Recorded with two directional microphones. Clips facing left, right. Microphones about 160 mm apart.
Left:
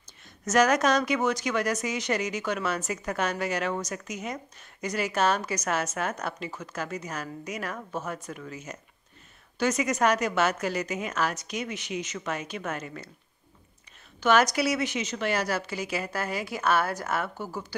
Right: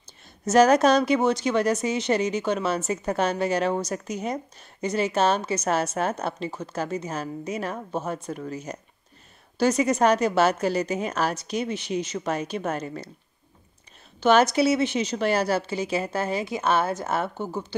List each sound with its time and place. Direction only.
0.5 s a woman's voice: 30° right (ahead or behind)
14.2 s a woman's voice: 30° right (ahead or behind)